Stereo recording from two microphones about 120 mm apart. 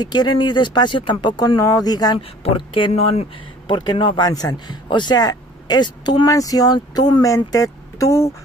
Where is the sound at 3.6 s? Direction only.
40° left (ahead or behind).